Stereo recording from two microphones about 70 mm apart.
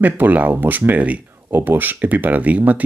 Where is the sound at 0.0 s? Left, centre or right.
Right.